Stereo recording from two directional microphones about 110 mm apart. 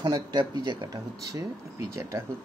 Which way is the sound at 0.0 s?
40° right (ahead or behind).